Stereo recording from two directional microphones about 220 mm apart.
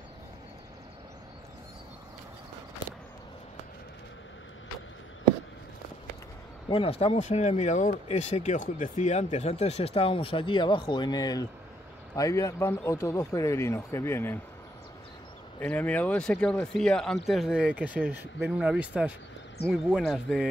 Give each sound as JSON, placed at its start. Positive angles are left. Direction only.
{"t": 6.7, "sound": "speech", "side_deg": 25}
{"t": 15.6, "sound": "speech", "side_deg": 5}